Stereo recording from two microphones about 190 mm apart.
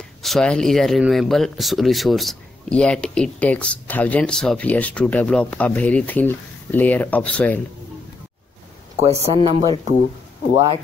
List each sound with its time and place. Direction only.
0.2 s speech: centre (ahead or behind)
9.0 s speech: 30° right (ahead or behind)